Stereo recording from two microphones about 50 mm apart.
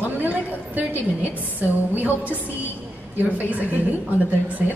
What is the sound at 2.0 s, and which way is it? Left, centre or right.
Speech, right.